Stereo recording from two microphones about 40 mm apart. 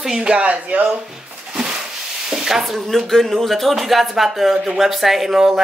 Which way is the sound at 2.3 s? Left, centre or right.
Centre.